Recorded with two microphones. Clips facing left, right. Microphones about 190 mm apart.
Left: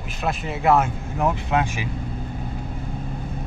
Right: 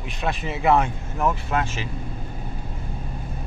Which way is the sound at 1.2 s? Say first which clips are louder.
Left 2 dB; 15° left (ahead or behind).